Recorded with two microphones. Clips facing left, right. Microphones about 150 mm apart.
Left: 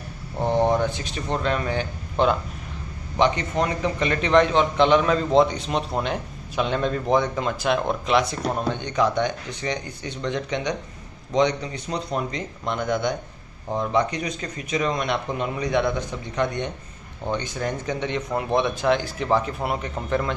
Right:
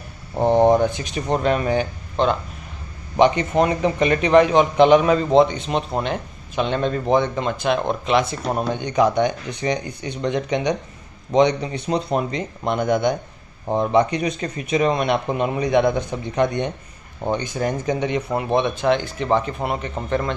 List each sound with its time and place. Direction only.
0.4 s a sound: 20° right (ahead or behind)
0.9 s speech: 15° right (ahead or behind)
2.2 s speech: 10° left (ahead or behind)
3.2 s a man's voice: 20° right (ahead or behind); by 8.4 s centre (ahead or behind)
8.5 s a man's voice: 10° right (ahead or behind)